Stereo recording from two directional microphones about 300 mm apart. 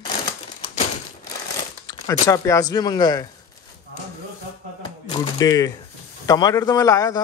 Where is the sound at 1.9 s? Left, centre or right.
Centre.